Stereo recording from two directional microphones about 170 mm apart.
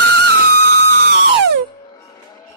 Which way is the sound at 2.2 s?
20° left (ahead or behind).